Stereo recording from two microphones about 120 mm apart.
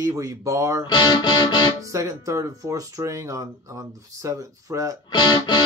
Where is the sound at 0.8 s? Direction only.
35° left (ahead or behind).